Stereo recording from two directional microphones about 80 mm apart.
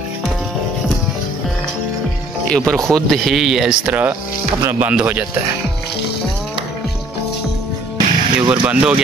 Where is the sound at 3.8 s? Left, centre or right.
Centre.